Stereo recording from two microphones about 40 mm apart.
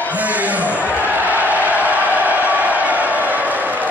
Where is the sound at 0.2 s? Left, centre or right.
Right.